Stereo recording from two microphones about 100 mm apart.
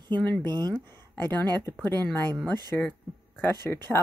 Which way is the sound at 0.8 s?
20° left (ahead or behind).